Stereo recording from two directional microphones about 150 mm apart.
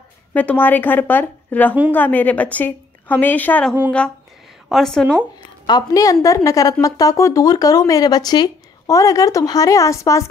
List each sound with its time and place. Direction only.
0.3 s a woman's voice: 10° left (ahead or behind)
5.7 s speech: 25° left (ahead or behind)